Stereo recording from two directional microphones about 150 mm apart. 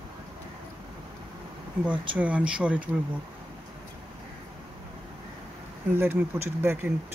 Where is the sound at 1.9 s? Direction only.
10° right (ahead or behind).